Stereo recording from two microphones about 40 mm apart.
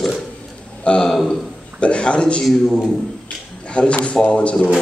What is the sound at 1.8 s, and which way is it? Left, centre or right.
Speech, left.